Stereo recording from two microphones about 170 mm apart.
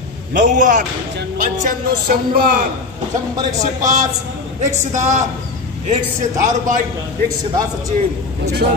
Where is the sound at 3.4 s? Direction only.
45° right (ahead or behind).